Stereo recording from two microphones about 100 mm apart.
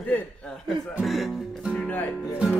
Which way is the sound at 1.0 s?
Centre (ahead or behind).